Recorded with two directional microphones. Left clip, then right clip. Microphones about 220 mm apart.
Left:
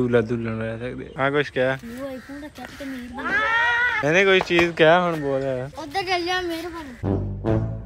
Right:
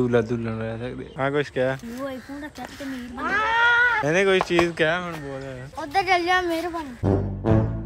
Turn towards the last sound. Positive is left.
turn(degrees=0)  # may be behind; listen again after turning